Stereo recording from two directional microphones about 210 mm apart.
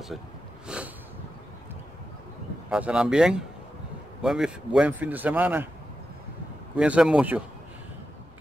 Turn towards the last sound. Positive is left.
turn(degrees=-5)  # may be behind; listen again after turning